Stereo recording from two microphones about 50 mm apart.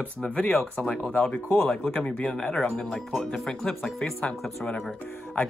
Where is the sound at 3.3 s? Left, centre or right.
Centre.